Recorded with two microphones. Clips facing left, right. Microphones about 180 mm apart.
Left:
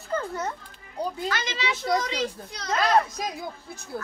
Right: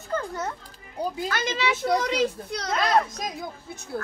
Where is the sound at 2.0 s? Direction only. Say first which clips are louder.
Right 5 dB; 65° right (ahead or behind).